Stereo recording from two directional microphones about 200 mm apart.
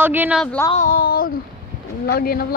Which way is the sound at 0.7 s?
45° left (ahead or behind).